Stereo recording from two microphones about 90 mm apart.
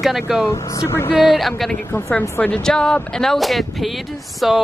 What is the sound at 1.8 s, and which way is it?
Speech, 25° left (ahead or behind).